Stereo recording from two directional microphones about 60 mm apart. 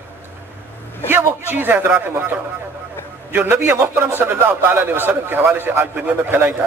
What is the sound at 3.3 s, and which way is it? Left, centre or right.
A man's voice, right.